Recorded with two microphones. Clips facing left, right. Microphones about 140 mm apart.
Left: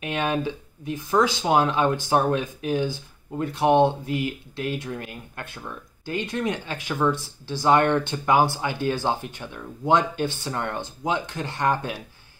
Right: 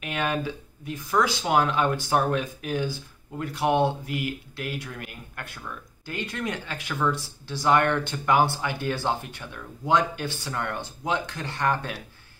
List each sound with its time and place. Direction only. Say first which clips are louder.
0.0 s speech: left 3 dB; 20° left (ahead or behind)